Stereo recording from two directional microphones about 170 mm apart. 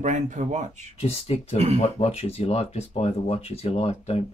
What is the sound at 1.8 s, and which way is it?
Speech, 40° left (ahead or behind).